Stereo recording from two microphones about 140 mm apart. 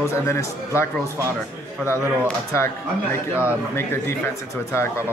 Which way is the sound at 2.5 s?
20° left (ahead or behind).